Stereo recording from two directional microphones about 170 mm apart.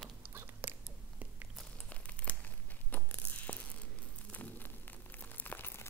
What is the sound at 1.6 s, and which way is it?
Crumpling, 10° left (ahead or behind).